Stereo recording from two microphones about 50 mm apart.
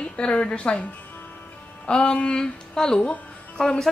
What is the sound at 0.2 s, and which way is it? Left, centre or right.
Speech, left.